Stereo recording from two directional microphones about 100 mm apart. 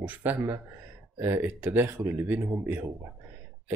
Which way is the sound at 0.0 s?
15° right (ahead or behind).